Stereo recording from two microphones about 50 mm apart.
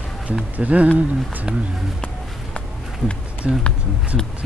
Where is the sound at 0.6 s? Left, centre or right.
Right.